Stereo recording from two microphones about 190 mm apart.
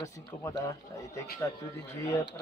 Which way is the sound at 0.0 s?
15° left (ahead or behind).